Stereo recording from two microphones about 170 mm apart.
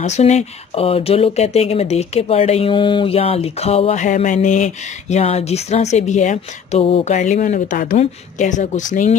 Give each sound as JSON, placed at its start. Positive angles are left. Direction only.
{"t": 0.0, "sound": "speech", "side_deg": 40}